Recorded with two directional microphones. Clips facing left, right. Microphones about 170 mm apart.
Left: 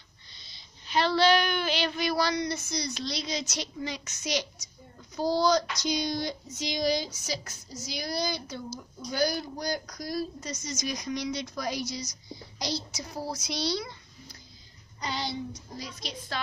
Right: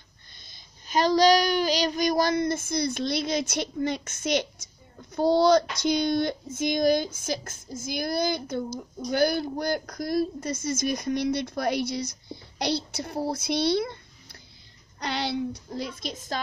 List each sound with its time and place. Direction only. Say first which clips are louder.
0.3 s child singing: right 1 dB; 50° right (ahead or behind)
5.3 s a woman's voice: right 5 dB; 60° right (ahead or behind)
5.8 s child singing: right 6 dB; 55° right (ahead or behind)
8.7 s a woman's voice: right 4 dB; 55° right (ahead or behind)
15.0 s child singing: right 5 dB; 65° right (ahead or behind); by 16.3 s 45° right (ahead or behind)